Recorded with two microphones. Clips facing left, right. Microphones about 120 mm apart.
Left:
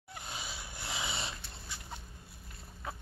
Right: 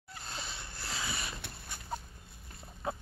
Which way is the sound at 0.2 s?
10° left (ahead or behind).